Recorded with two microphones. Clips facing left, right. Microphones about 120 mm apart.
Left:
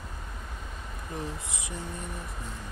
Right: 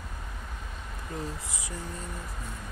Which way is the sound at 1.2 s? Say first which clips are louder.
Even; 20° left (ahead or behind).